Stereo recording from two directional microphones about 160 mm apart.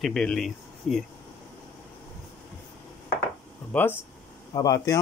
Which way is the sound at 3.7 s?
10° left (ahead or behind).